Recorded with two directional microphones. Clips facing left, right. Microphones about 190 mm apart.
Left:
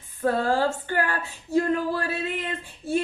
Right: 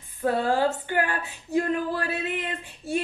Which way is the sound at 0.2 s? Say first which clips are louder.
Even; 15° right (ahead or behind).